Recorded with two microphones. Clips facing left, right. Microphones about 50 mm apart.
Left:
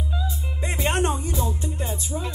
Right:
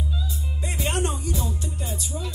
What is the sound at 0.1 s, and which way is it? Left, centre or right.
Music, left.